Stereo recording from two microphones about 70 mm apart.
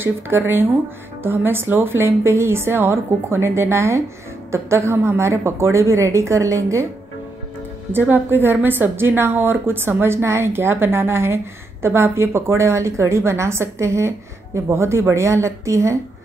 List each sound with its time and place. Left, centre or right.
0.0 s a woman's voice: right
7.9 s a woman's voice: right